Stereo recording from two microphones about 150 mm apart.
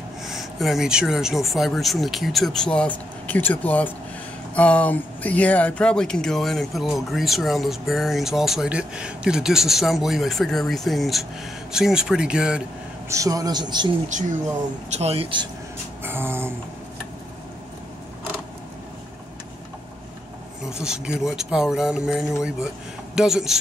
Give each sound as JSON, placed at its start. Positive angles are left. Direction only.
{"t": 0.3, "sound": "speech", "side_deg": 0}
{"t": 13.1, "sound": "speech", "side_deg": -20}
{"t": 14.9, "sound": "speech", "side_deg": -45}
{"t": 16.0, "sound": "a sound", "side_deg": -15}
{"t": 20.7, "sound": "speech", "side_deg": -5}